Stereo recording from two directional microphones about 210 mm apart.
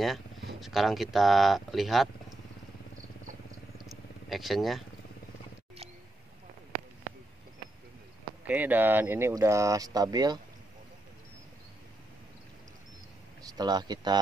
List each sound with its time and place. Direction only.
0.6 s speech: centre (ahead or behind)
3.7 s vehicle: centre (ahead or behind)
8.5 s speech: 10° right (ahead or behind)
13.4 s speech: 20° right (ahead or behind)